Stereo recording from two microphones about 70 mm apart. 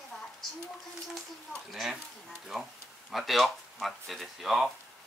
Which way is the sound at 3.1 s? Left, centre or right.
Centre.